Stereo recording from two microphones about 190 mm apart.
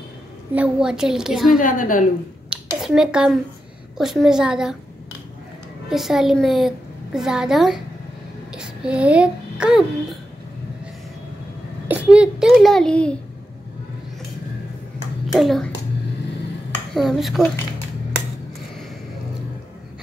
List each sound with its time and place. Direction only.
0.6 s a child's voice: 5° right (ahead or behind)
1.6 s a woman's voice: 45° left (ahead or behind)
2.5 s a sound: 5° right (ahead or behind)
4.0 s a child's voice: centre (ahead or behind)
5.9 s a child's voice: centre (ahead or behind)
11.9 s a child's voice: 5° right (ahead or behind)
15.3 s a child's voice: centre (ahead or behind)
16.9 s a child's voice: centre (ahead or behind)